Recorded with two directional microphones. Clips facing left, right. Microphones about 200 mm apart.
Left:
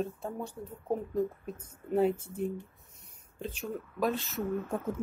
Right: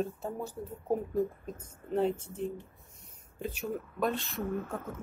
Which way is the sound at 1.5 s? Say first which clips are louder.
Left 2 dB; 10° left (ahead or behind).